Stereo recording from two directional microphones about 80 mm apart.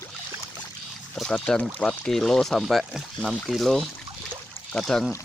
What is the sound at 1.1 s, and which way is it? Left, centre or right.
Speech, centre.